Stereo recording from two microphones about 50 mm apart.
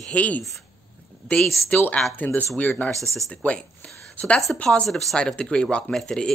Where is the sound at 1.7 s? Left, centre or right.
Left.